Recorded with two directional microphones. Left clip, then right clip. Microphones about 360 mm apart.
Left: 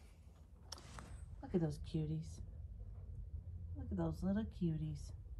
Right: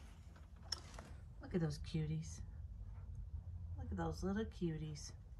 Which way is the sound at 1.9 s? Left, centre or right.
Left.